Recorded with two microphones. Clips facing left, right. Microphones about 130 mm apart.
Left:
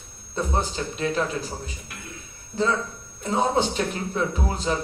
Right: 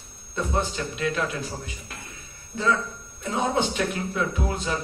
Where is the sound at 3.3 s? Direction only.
35° left (ahead or behind).